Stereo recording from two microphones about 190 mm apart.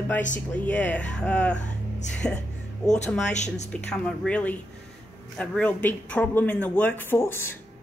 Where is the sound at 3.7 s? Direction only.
5° left (ahead or behind).